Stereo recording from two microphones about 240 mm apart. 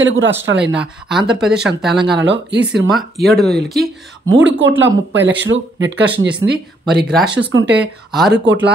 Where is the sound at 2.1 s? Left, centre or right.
Right.